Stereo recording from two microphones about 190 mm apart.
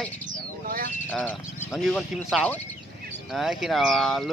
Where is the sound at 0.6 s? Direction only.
50° right (ahead or behind).